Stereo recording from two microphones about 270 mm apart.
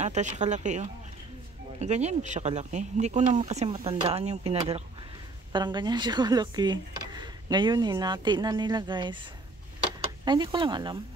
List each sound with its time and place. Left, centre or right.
0.0 s speech: right